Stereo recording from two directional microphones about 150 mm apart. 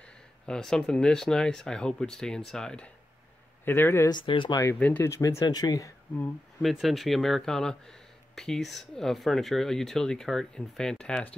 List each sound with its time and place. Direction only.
0.0 s speech: 5° left (ahead or behind)
4.1 s speech: 30° left (ahead or behind)
4.7 s speech: 10° left (ahead or behind)
6.6 s speech: centre (ahead or behind)